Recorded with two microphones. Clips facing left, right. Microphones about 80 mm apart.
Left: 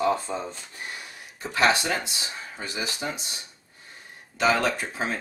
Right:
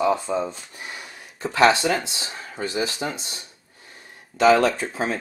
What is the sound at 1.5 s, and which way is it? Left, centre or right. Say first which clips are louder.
Speech: right 5 dB; right.